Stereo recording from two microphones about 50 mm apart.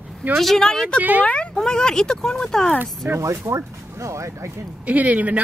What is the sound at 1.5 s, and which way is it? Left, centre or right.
Speech, centre.